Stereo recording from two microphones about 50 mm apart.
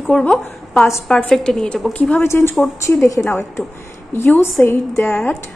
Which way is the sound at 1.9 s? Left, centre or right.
Left.